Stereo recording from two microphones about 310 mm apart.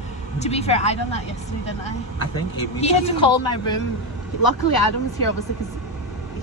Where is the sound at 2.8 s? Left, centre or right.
Centre.